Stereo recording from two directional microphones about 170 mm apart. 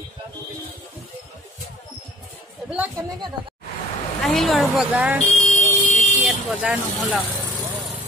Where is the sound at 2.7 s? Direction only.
10° right (ahead or behind).